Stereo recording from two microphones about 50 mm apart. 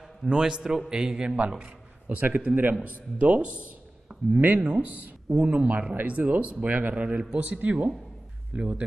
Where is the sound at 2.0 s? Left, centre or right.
Right; by 4.8 s centre.